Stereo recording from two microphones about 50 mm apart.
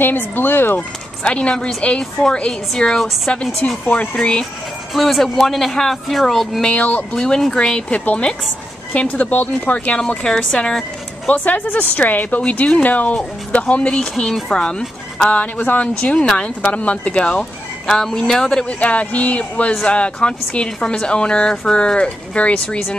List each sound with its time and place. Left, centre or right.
0.0 s speech: left
0.7 s speech: left
4.9 s speech: centre
6.7 s speech: left
7.2 s a woman's voice: centre
7.9 s speech: left
9.2 s a woman's voice: left
9.9 s a woman's voice: centre
11.2 s a woman's voice: left
13.1 s a woman's voice: centre
13.6 s speech: left
15.2 s speech: left
16.0 s a woman's voice: centre
18.7 s speech: left